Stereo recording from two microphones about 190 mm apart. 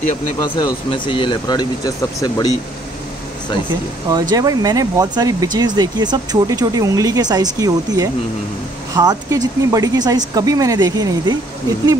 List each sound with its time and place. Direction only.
0.4 s speech: 25° left (ahead or behind)
4.1 s speech: 20° right (ahead or behind)